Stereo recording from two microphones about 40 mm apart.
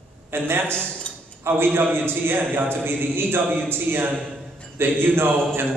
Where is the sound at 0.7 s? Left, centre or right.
Left.